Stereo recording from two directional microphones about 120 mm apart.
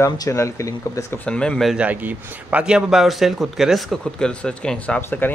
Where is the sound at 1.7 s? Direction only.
10° right (ahead or behind).